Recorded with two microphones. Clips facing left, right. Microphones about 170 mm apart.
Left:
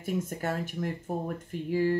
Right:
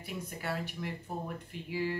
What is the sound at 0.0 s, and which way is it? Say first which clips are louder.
Speech: left 8 dB; 45° left (ahead or behind).